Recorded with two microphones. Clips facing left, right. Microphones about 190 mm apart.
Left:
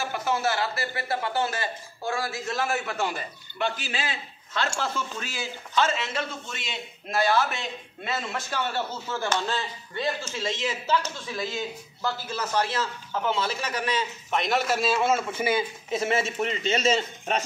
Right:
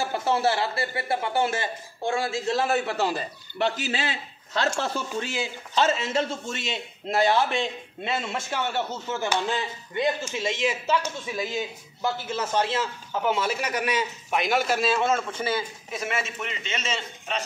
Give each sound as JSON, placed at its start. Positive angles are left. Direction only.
{"t": 0.1, "sound": "a man's voice", "side_deg": -30}
{"t": 3.7, "sound": "a man's voice", "side_deg": -40}
{"t": 5.1, "sound": "a man's voice", "side_deg": -20}
{"t": 15.9, "sound": "a man's voice", "side_deg": 30}